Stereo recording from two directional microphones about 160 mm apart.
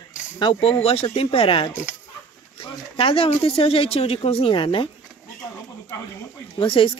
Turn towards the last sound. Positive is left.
turn(degrees=35)  # may be behind; listen again after turning